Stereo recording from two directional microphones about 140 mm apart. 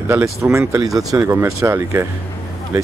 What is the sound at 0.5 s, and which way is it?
Speech, 20° right (ahead or behind).